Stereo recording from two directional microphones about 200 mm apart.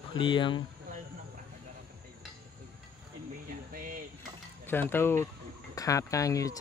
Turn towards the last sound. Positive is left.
turn(degrees=15)  # may be behind; listen again after turning